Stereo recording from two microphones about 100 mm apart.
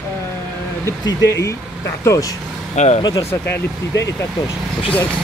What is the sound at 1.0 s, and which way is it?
Speech, 30° left (ahead or behind).